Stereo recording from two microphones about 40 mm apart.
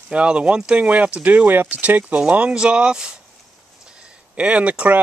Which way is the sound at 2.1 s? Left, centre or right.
Right.